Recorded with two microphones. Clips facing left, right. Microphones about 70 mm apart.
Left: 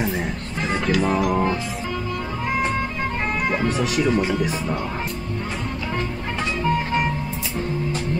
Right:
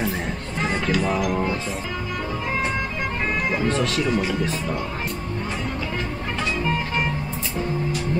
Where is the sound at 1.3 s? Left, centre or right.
Centre.